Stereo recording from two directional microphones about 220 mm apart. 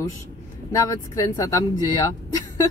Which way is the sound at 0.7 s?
15° left (ahead or behind).